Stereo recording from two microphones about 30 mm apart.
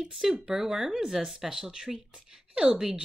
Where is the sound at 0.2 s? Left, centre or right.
Centre.